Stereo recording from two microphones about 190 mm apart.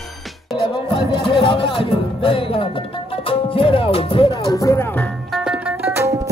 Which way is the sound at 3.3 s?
30° left (ahead or behind).